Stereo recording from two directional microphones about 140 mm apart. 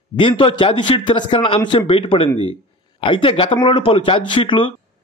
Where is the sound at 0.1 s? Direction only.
40° left (ahead or behind).